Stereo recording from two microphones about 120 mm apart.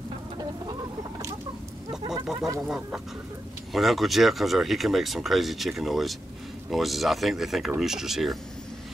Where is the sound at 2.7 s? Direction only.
5° right (ahead or behind).